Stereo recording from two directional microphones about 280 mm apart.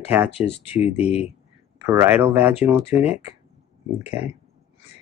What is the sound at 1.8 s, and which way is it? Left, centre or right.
Speech, centre.